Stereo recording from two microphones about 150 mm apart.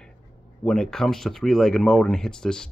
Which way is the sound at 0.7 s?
5° left (ahead or behind).